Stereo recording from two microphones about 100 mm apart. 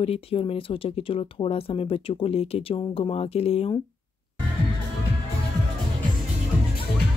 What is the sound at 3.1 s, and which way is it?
Speech, 85° left.